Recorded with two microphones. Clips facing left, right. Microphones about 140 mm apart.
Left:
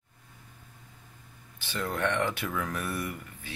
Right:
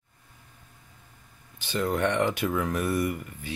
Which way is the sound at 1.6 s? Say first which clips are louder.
Right 5 dB; 20° right (ahead or behind).